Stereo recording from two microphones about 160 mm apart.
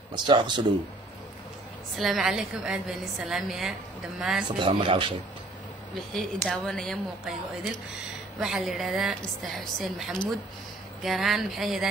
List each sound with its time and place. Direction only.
0.1 s speech: 30° right (ahead or behind)
2.0 s a woman's voice: centre (ahead or behind)
4.6 s speech: 30° right (ahead or behind)
6.1 s a woman's voice: centre (ahead or behind)
8.4 s a woman's voice: centre (ahead or behind)